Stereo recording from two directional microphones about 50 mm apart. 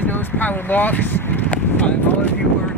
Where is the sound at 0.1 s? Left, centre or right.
Left.